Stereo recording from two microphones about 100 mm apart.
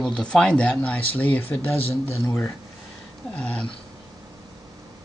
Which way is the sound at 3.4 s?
10° left (ahead or behind).